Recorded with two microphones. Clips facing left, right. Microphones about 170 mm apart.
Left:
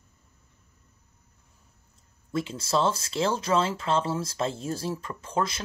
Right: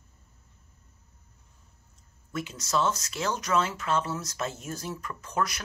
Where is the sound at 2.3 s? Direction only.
30° left (ahead or behind).